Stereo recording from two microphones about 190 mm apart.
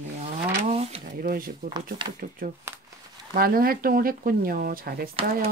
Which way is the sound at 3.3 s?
50° right (ahead or behind).